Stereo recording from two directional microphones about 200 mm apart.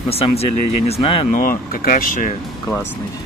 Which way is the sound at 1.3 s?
45° left (ahead or behind).